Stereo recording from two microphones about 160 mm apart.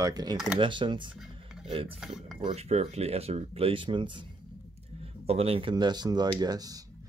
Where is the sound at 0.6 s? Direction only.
30° right (ahead or behind).